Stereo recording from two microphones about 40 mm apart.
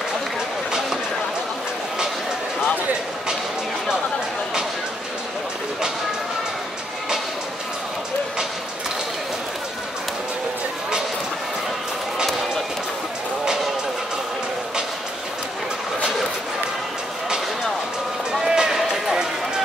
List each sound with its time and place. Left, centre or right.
18.3 s run: centre